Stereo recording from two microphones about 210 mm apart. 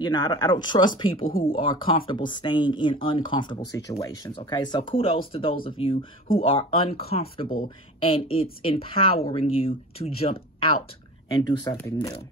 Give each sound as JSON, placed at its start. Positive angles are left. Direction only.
{"t": 0.0, "sound": "speech", "side_deg": 20}
{"t": 1.2, "sound": "speech", "side_deg": 45}
{"t": 1.5, "sound": "speech", "side_deg": 25}